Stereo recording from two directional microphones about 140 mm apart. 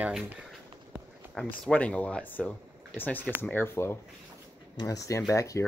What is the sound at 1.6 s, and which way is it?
Speech, 10° left (ahead or behind).